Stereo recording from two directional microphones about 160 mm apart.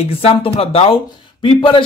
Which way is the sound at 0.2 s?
35° left (ahead or behind).